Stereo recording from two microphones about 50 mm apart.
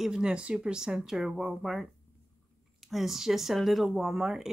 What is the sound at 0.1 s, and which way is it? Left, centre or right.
Speech, centre.